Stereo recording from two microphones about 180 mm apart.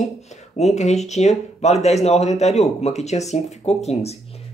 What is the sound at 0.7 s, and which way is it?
Speech, 40° left (ahead or behind).